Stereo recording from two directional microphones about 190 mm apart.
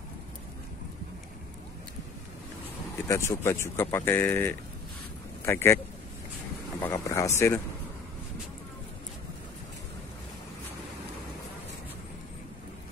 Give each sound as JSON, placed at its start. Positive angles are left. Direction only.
{"t": 3.1, "sound": "a man's voice", "side_deg": 15}
{"t": 6.8, "sound": "speech", "side_deg": 15}